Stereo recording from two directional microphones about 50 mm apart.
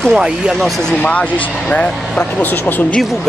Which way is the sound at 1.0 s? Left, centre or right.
Left.